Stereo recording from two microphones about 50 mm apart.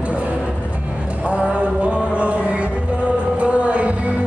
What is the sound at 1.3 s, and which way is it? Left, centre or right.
Mantra, right.